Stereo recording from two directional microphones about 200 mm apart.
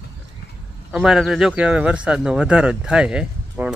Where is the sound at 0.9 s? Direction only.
Centre (ahead or behind).